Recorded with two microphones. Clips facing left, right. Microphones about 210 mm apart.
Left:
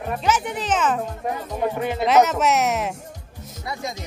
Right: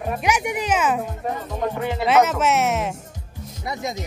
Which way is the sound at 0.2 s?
10° right (ahead or behind).